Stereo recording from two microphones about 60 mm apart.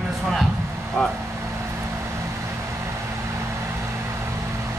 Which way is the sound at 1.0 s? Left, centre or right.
Centre.